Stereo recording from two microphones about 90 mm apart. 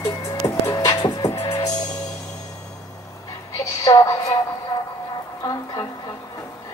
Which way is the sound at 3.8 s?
40° left (ahead or behind).